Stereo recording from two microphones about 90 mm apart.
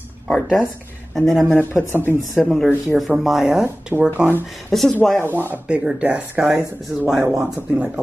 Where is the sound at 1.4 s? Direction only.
20° left (ahead or behind).